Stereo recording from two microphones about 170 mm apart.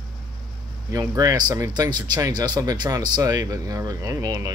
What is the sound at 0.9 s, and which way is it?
Speech, 20° right (ahead or behind).